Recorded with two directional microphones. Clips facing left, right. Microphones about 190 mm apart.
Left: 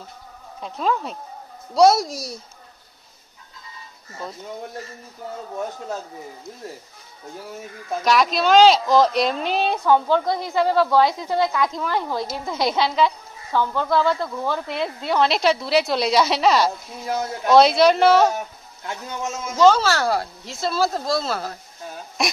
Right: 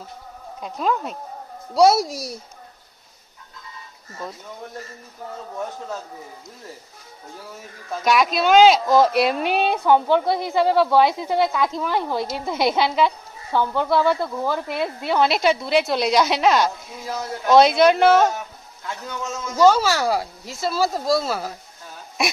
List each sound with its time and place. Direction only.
0.6 s a woman's voice: centre (ahead or behind)
8.0 s a woman's voice: centre (ahead or behind)
18.9 s a man's voice: 20° left (ahead or behind)
19.5 s speech: 10° right (ahead or behind)